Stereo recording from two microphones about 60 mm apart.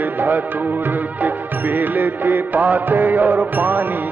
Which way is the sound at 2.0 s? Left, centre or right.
Right.